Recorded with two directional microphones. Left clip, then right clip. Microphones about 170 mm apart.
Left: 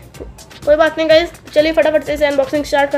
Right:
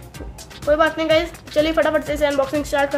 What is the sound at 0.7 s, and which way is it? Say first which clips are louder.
Speech: left 6 dB; 30° left (ahead or behind).